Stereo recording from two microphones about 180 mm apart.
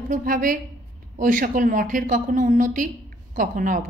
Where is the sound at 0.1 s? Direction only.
50° right (ahead or behind).